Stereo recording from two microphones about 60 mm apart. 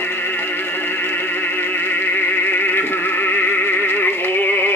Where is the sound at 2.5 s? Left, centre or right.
Left.